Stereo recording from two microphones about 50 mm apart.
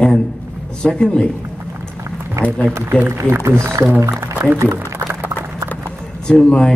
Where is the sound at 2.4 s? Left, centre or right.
Right.